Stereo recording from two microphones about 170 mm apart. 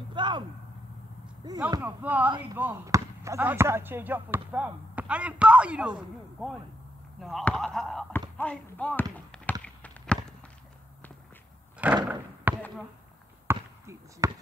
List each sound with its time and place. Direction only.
0.1 s a sound: 30° right (ahead or behind)
1.4 s speech: 25° right (ahead or behind)
2.0 s speech: 10° right (ahead or behind); by 9.0 s 5° left (ahead or behind)
9.1 s a sound: 10° left (ahead or behind)
11.8 s speech: 10° right (ahead or behind)
12.5 s basketball bounce: 10° right (ahead or behind)